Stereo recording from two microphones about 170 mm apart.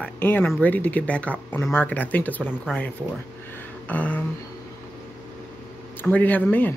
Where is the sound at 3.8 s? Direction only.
10° left (ahead or behind).